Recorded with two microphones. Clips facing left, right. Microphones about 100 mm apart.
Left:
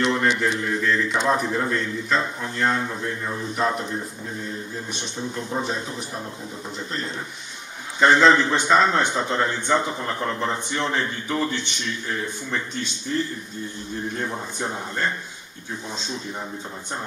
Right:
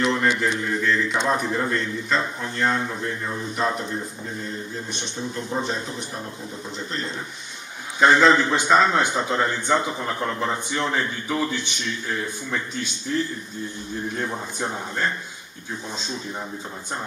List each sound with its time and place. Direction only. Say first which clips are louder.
0.0 s a man's voice: even; centre (ahead or behind)
5.5 s a man's voice: right 1 dB; 5° left (ahead or behind)
8.0 s a man's voice: even; 5° right (ahead or behind)
14.1 s a man's voice: even; centre (ahead or behind)